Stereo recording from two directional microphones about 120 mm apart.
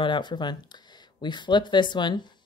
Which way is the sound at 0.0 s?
40° left (ahead or behind).